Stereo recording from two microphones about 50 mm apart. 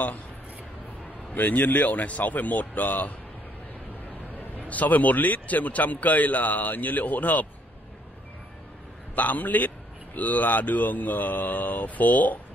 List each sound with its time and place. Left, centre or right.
1.3 s a man's voice: left
4.6 s a man's voice: left
9.1 s a man's voice: left